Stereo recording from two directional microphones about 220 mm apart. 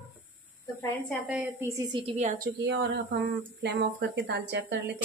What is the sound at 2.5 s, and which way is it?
Speech, 50° right (ahead or behind).